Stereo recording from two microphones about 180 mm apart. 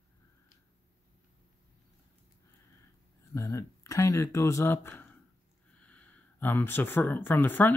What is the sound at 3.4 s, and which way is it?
Speech, 15° left (ahead or behind).